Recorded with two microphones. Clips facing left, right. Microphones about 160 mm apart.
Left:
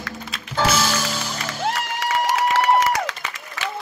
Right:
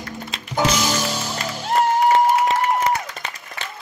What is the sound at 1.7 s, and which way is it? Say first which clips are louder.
Music: right 10 dB; 75° left (ahead or behind).